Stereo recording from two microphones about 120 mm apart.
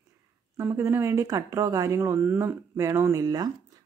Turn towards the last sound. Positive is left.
turn(degrees=-30)  # may be behind; listen again after turning